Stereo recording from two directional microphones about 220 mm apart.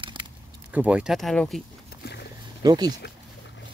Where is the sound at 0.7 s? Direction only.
5° right (ahead or behind).